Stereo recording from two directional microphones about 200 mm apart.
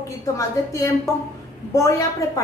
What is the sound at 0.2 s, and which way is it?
A woman's voice, 15° left (ahead or behind).